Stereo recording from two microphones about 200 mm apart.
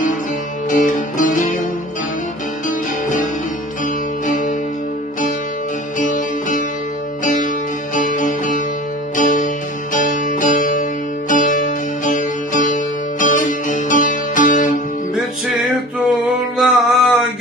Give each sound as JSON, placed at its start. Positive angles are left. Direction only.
{"t": 0.7, "sound": "music", "side_deg": 40}
{"t": 4.3, "sound": "music", "side_deg": 40}
{"t": 5.9, "sound": "music", "side_deg": 40}
{"t": 7.9, "sound": "music", "side_deg": 40}
{"t": 16.5, "sound": "music", "side_deg": 0}